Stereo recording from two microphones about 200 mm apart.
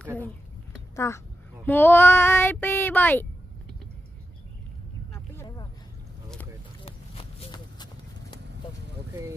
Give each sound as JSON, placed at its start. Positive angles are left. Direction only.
{"t": 0.0, "sound": "speech", "side_deg": 10}
{"t": 0.9, "sound": "child singing", "side_deg": 15}
{"t": 6.8, "sound": "clip-clop", "side_deg": 30}